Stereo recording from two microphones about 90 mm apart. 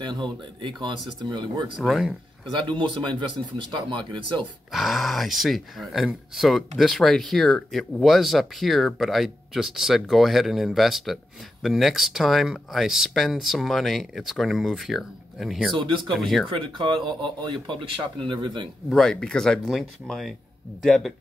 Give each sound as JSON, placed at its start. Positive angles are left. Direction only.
{"t": 0.0, "sound": "speech", "side_deg": -60}
{"t": 1.8, "sound": "speech", "side_deg": 0}
{"t": 2.6, "sound": "speech", "side_deg": -65}
{"t": 4.7, "sound": "speech", "side_deg": 0}
{"t": 15.7, "sound": "speech", "side_deg": -65}
{"t": 16.1, "sound": "speech", "side_deg": 0}
{"t": 16.4, "sound": "speech", "side_deg": -65}
{"t": 18.9, "sound": "speech", "side_deg": 5}